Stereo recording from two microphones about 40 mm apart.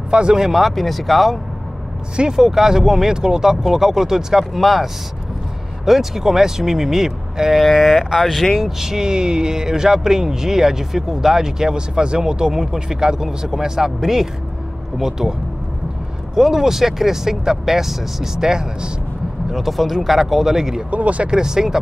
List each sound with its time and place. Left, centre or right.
0.1 s speech: right
0.5 s speech: centre
5.9 s speech: centre
8.5 s speech: centre
16.3 s speech: centre
19.5 s speech: centre
20.9 s speech: right
21.3 s speech: centre